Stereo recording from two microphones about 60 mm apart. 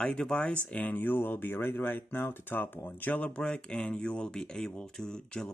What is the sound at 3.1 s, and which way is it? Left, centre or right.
Speech, centre.